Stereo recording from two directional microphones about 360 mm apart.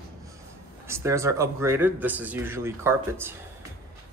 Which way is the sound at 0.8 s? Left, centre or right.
Centre.